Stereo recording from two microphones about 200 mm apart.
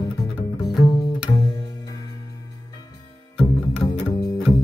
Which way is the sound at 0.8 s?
20° left (ahead or behind).